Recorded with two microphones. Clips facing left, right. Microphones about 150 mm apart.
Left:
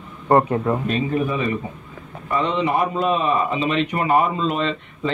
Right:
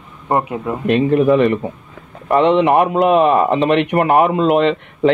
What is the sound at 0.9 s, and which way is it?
A man's voice, 70° right (ahead or behind).